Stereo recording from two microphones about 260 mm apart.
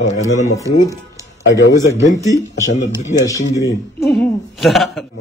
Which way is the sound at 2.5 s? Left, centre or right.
Left.